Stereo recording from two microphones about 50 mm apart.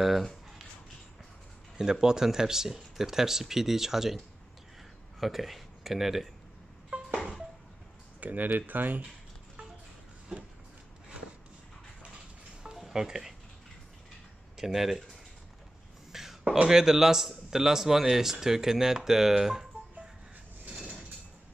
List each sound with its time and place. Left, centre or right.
1.8 s speech: centre
5.2 s speech: centre
6.9 s a sound: right
8.2 s speech: right
12.9 s speech: centre
14.6 s speech: centre
16.1 s a sound: centre
16.6 s speech: centre
20.7 s a sound: centre